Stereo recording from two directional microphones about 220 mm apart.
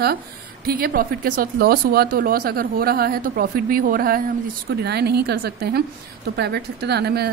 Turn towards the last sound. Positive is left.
turn(degrees=-45)  # may be behind; listen again after turning